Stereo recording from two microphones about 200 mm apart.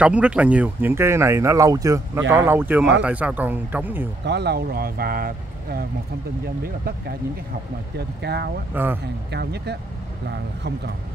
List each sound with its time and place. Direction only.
0.0 s speech: 5° right (ahead or behind)
4.2 s speech: 60° right (ahead or behind)
8.0 s speech: 55° right (ahead or behind)
8.7 s speech: 10° right (ahead or behind)
9.3 s speech: 55° right (ahead or behind)